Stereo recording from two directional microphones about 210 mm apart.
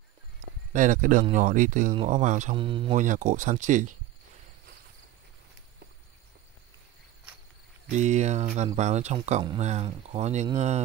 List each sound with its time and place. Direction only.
0.7 s speech: 40° right (ahead or behind)
2.5 s speech: 25° right (ahead or behind)
3.0 s speech: 35° right (ahead or behind)
7.9 s speech: 35° right (ahead or behind)